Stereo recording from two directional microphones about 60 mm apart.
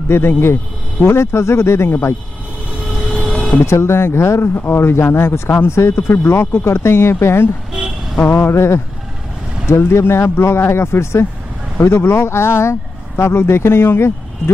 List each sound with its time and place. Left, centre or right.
0.1 s speech: left
3.6 s speech: left